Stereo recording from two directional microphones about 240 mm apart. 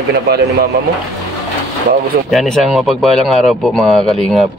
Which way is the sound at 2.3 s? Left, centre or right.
Centre.